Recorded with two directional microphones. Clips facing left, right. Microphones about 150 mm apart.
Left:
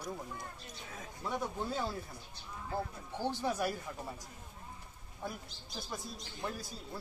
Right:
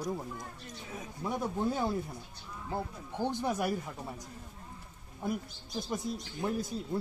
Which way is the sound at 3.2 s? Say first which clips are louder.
Right 3 dB; 15° right (ahead or behind).